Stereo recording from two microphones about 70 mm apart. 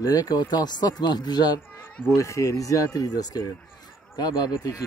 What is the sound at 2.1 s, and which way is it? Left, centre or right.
Speech, left.